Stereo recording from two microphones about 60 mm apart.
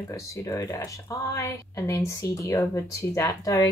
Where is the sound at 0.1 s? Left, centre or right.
Left.